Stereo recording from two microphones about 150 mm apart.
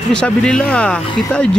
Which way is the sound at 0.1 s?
5° left (ahead or behind).